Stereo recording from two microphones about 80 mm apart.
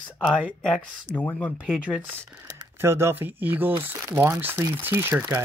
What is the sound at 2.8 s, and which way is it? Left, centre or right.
Speech, right.